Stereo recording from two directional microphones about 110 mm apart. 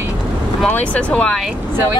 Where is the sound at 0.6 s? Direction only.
10° left (ahead or behind).